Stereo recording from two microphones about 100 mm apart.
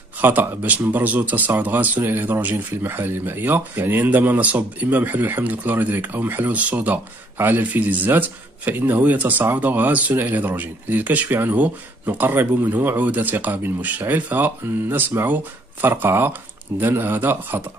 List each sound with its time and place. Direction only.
0.2 s speech: 20° right (ahead or behind)